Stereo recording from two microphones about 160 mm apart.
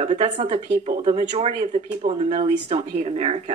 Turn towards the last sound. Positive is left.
turn(degrees=-40)  # may be behind; listen again after turning